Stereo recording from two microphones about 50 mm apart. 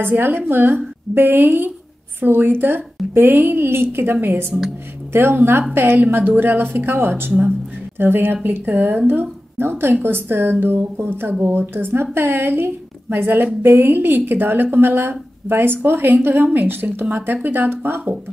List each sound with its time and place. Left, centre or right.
0.0 s a woman's voice: right